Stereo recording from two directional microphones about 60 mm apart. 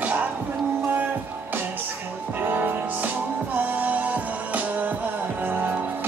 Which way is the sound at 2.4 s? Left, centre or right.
Right.